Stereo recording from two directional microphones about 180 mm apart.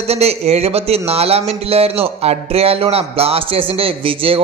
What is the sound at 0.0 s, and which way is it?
A man's voice, 35° right (ahead or behind).